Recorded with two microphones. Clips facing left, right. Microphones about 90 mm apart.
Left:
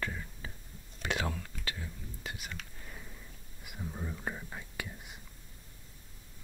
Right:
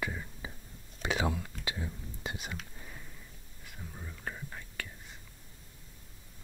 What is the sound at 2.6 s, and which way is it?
Whispering, centre (ahead or behind).